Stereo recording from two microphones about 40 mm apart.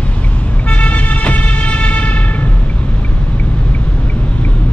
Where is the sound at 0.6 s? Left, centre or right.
Left.